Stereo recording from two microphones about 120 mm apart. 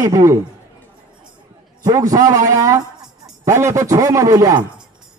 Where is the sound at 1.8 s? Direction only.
30° right (ahead or behind).